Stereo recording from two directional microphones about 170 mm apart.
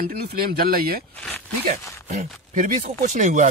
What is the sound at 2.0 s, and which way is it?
Speech, 50° right (ahead or behind).